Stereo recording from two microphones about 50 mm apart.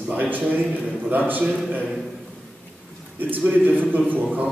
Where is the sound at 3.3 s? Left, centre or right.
Right.